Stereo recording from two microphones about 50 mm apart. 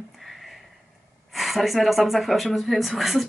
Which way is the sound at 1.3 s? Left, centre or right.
Centre.